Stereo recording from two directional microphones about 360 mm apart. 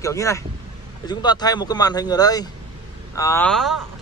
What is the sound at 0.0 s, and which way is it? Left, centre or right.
A man's voice, centre.